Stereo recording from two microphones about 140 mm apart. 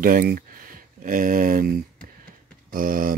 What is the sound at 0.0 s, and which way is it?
Speech, 90° right.